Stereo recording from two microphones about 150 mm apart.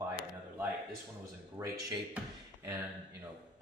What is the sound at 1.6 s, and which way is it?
Speech, 20° right (ahead or behind).